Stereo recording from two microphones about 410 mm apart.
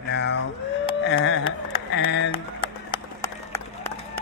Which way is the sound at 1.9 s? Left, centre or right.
Left.